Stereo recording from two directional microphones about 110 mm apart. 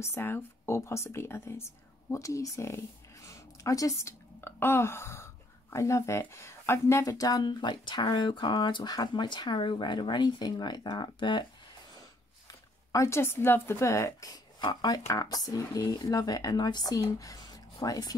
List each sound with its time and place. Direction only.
0.0 s speech: 25° left (ahead or behind); by 11.4 s 45° left (ahead or behind)
12.4 s speech: 30° left (ahead or behind)